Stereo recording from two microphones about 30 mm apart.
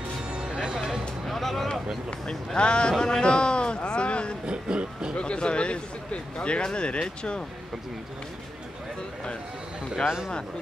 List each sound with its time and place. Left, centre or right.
0.3 s music: right
1.2 s speech: centre
2.0 s speech: left
4.5 s a sound: right
5.1 s speech: left